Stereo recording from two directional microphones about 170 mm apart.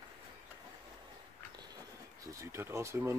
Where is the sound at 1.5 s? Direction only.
20° right (ahead or behind).